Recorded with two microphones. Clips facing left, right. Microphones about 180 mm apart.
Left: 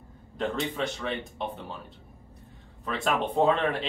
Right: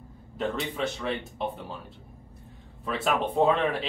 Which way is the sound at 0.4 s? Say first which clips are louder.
Even; centre (ahead or behind).